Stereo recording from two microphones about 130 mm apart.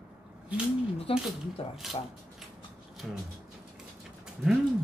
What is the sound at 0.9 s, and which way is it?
Speech, 45° left (ahead or behind).